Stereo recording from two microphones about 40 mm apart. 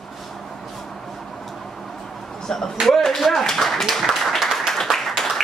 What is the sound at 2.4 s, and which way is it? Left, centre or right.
Speech, centre.